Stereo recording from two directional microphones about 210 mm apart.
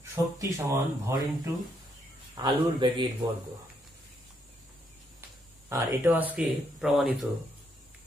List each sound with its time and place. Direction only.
0.1 s a man's voice: 15° right (ahead or behind)
5.7 s speech: 10° right (ahead or behind)